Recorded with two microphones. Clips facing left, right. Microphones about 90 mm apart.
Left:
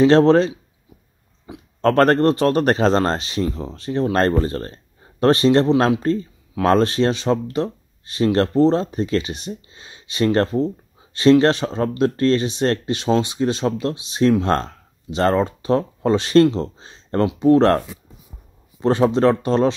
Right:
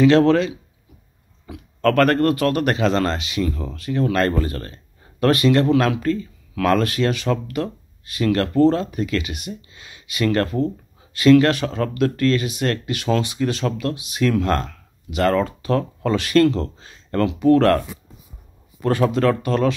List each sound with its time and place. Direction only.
0.0 s speech: 30° left (ahead or behind)